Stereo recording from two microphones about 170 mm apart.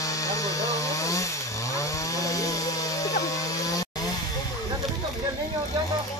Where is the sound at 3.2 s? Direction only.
20° left (ahead or behind).